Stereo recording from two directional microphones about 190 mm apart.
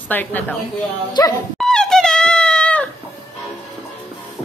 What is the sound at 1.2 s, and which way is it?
Speech, 20° left (ahead or behind).